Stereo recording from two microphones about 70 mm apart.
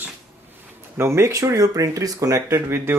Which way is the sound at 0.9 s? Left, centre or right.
Right.